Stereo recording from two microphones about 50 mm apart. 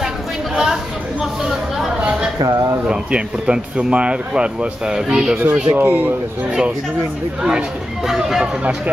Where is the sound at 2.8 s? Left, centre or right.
Centre.